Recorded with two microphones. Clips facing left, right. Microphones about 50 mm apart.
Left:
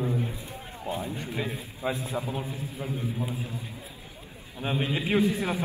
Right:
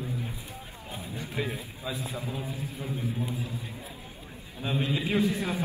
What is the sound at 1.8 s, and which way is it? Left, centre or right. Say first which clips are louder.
Speech: left 7 dB; left.